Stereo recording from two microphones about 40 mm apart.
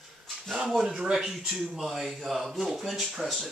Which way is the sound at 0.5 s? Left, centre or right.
Centre.